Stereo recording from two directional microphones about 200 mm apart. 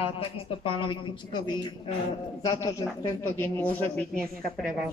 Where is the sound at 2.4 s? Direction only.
15° left (ahead or behind); by 4.9 s centre (ahead or behind).